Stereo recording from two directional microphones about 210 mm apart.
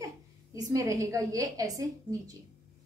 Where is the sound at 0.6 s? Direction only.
15° right (ahead or behind).